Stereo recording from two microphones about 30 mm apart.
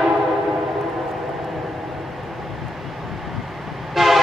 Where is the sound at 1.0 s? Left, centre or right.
Centre.